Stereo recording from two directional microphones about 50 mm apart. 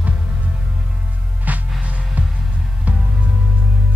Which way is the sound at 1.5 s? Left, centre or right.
Right.